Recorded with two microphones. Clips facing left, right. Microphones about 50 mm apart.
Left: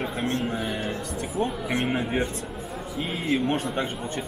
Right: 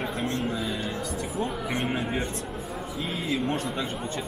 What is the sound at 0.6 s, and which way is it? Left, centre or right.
Speech, left.